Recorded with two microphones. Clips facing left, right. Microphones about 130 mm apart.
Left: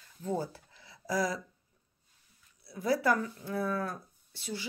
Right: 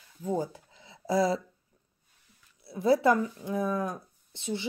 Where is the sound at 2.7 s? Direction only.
25° right (ahead or behind).